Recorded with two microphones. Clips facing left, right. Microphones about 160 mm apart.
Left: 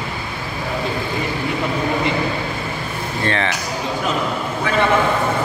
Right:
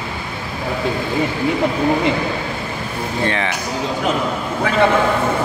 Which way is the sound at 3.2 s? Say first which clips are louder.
Left 1 dB; 10° right (ahead or behind).